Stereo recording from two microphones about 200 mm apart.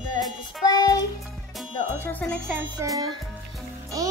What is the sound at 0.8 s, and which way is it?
Speech, 20° left (ahead or behind).